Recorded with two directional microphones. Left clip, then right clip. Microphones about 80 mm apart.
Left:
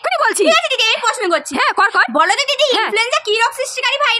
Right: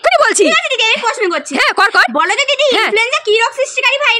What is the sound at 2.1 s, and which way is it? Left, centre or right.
Speech, left.